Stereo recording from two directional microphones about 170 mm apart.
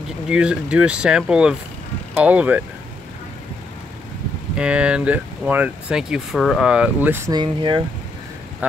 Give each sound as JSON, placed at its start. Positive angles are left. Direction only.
{"t": 0.3, "sound": "speech", "side_deg": -5}
{"t": 4.6, "sound": "speech", "side_deg": -5}
{"t": 7.3, "sound": "speech", "side_deg": -25}